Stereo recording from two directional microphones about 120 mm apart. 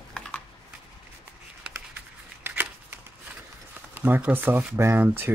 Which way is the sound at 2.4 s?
15° right (ahead or behind).